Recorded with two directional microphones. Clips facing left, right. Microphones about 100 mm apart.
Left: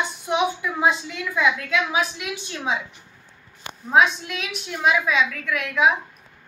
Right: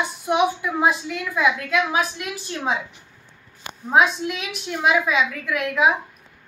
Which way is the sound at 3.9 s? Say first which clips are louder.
Right 1 dB; 20° right (ahead or behind).